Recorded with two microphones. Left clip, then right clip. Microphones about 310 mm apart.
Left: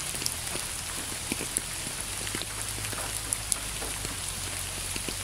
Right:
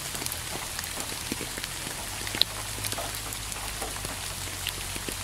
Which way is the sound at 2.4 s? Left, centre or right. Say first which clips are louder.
Right 11 dB; right.